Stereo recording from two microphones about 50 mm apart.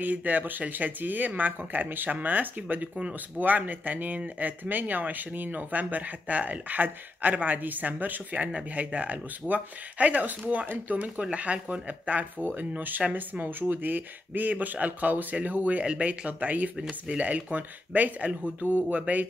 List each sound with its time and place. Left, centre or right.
0.0 s speech: right